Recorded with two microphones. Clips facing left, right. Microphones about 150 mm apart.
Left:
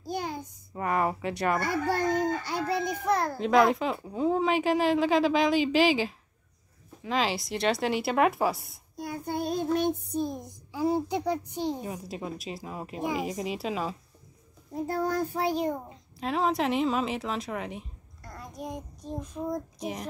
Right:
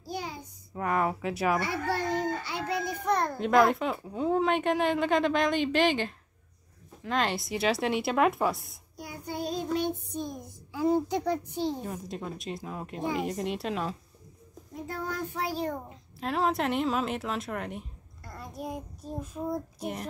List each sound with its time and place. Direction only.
0.1 s child singing: 50° left (ahead or behind)
0.7 s a child's voice: centre (ahead or behind)
1.6 s speech: 45° left (ahead or behind)
3.1 s a child's voice: 5° left (ahead or behind)
9.0 s speech: 55° left (ahead or behind)
10.1 s a child's voice: 30° left (ahead or behind)
10.4 s a child's voice: 10° left (ahead or behind)
14.7 s a child's voice: 35° left (ahead or behind)
15.4 s a child's voice: 15° left (ahead or behind)
15.9 s speech: centre (ahead or behind)